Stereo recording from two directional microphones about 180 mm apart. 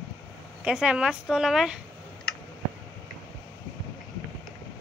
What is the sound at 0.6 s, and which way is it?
Speech, 5° right (ahead or behind).